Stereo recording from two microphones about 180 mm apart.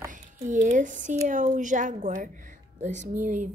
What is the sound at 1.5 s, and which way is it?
Speech, 45° right (ahead or behind).